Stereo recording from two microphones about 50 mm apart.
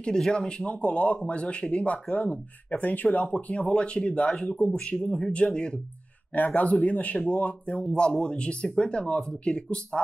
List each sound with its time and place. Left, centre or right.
0.0 s speech: centre
0.7 s speech: left
4.6 s speech: centre
6.3 s speech: left
7.8 s speech: centre